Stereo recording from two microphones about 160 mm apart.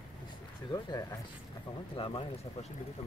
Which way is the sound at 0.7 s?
25° left (ahead or behind).